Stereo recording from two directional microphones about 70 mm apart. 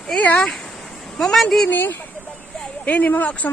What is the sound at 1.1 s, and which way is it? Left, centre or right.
Speech, centre.